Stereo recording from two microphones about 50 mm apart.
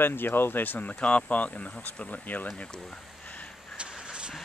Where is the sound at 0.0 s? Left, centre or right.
Left.